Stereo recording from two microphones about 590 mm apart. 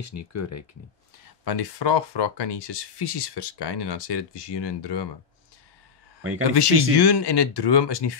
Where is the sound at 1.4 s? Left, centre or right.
Left.